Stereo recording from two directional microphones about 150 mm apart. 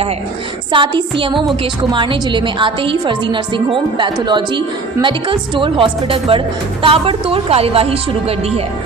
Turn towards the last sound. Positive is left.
turn(degrees=-40)  # may be behind; listen again after turning